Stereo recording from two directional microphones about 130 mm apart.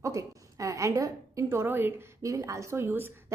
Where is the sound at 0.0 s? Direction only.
25° right (ahead or behind).